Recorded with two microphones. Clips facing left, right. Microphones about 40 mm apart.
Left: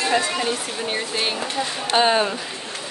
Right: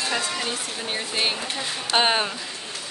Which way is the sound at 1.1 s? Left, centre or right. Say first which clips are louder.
Left 1 dB; centre.